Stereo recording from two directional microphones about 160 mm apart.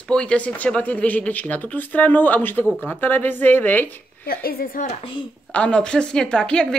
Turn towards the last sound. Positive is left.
turn(degrees=5)  # may be behind; listen again after turning